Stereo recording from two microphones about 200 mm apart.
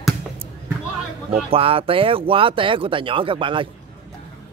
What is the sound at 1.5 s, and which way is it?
Speech, 30° right (ahead or behind).